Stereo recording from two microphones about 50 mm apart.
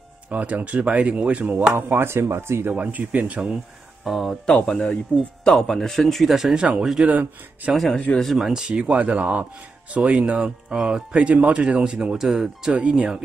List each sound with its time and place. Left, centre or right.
0.3 s speech: right
1.8 s speech: right
2.7 s speech: right
4.0 s speech: centre
4.6 s a man's voice: centre
6.5 s speech: centre
7.1 s speech: right
7.7 s speech: centre
8.4 s speech: centre
8.9 s speech: right; by 11.1 s centre
11.1 s speech: right